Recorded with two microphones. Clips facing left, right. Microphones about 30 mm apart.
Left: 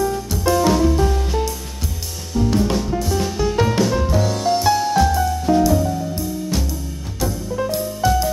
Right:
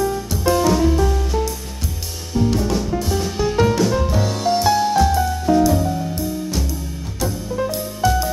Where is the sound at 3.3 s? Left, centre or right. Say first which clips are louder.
Right 2 dB; centre.